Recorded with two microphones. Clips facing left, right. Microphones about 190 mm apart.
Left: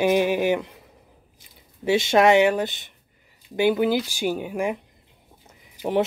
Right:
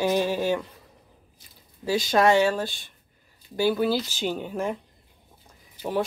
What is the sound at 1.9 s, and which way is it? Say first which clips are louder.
Speech: left 3 dB; 25° left (ahead or behind).